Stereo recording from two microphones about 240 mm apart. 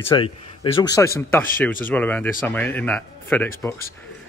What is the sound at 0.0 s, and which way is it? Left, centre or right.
A man's voice, left.